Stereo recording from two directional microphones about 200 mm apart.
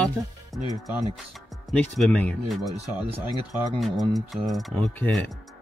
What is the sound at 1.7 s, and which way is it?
Speech, 5° left (ahead or behind).